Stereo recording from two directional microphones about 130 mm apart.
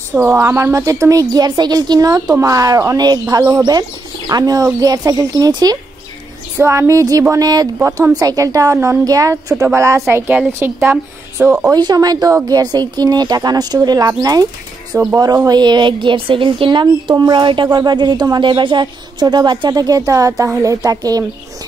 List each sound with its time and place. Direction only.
0.1 s a woman's voice: 15° right (ahead or behind)
11.7 s a woman's voice: 30° right (ahead or behind)